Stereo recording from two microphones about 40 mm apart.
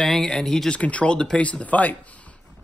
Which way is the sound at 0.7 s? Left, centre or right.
Left.